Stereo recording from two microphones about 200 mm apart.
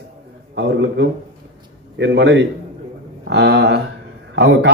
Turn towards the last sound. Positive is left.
turn(degrees=-55)  # may be behind; listen again after turning